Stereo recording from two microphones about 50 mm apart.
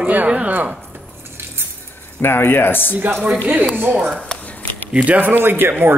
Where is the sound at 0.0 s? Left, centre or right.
Right.